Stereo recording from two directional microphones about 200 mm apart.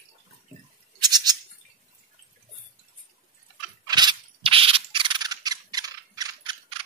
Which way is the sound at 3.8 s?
20° right (ahead or behind).